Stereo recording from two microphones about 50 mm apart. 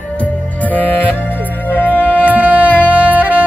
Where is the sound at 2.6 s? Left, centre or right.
Left.